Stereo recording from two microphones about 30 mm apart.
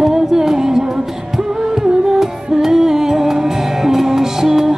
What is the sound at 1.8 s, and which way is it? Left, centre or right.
Music, centre.